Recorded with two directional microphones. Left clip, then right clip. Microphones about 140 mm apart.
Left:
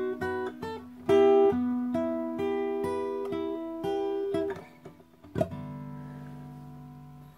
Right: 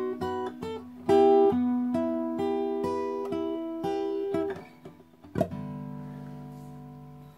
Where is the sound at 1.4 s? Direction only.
40° right (ahead or behind).